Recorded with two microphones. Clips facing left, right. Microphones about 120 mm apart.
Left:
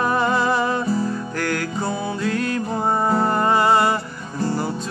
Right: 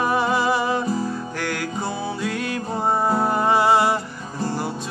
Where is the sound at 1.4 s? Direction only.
Centre (ahead or behind).